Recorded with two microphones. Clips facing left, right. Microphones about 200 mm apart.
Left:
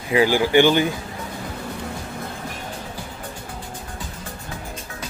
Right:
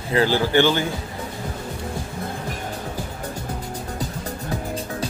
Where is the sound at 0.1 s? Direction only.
15° left (ahead or behind).